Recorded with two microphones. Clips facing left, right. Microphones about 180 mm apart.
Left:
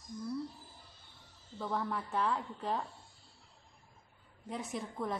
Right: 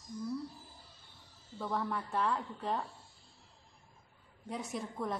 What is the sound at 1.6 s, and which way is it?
A woman's voice, centre (ahead or behind).